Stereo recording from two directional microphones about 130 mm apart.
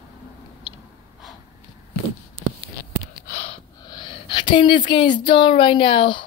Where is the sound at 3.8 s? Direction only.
35° left (ahead or behind).